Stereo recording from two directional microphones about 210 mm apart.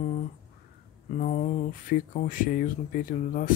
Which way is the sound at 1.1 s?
35° left (ahead or behind).